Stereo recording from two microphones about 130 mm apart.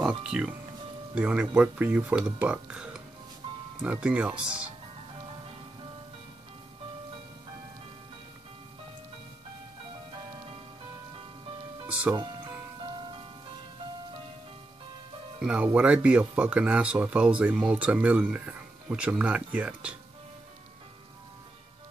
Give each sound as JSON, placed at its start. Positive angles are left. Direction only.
{"t": 0.0, "sound": "speech", "side_deg": -10}
{"t": 3.4, "sound": "music", "side_deg": -40}
{"t": 3.8, "sound": "speech", "side_deg": -10}
{"t": 11.9, "sound": "music", "side_deg": -10}
{"t": 15.4, "sound": "speech", "side_deg": -10}